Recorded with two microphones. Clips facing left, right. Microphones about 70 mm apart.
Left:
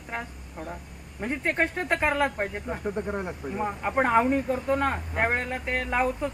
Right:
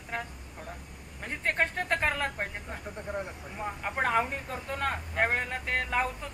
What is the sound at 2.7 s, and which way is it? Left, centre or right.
Speech, left.